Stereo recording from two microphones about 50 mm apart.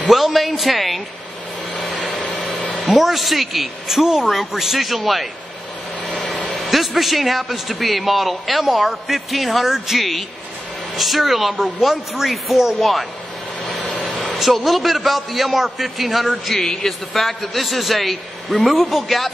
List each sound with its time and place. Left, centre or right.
0.1 s a man's voice: centre
1.8 s vehicle: centre
2.7 s a man's voice: centre
6.0 s vehicle: left
6.5 s a man's voice: centre
13.8 s a man's voice: centre